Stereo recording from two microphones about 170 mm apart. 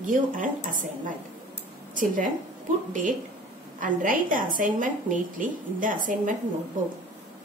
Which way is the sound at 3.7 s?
55° right (ahead or behind).